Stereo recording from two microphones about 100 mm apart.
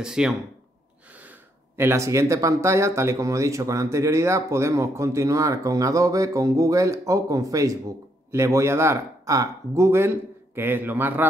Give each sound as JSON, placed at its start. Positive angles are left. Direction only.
{"t": 0.0, "sound": "speech", "side_deg": -5}
{"t": 1.8, "sound": "speech", "side_deg": -25}